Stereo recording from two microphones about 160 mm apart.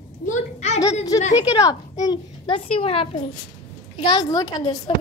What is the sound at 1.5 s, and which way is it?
A child's voice, 25° left (ahead or behind).